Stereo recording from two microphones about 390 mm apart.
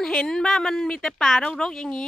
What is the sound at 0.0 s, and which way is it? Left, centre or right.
Speech, centre.